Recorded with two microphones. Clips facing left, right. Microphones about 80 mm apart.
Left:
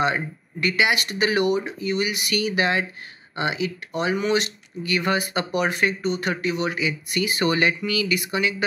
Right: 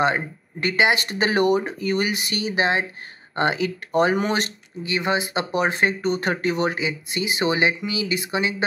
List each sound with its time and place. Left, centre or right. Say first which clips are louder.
0.0 s speech: right 2 dB; right
3.3 s speech: right 3 dB; right
4.8 s speech: even; right